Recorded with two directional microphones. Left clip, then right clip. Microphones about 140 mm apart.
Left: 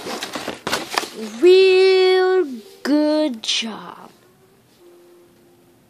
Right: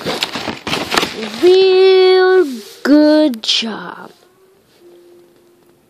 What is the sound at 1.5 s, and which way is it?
Speech, 35° left (ahead or behind).